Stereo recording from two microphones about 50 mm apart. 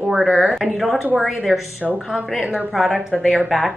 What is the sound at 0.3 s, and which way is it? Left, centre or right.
Speech, centre.